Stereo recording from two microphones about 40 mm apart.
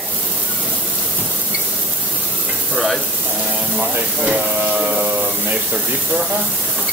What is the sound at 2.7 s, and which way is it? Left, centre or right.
Sizzle, centre.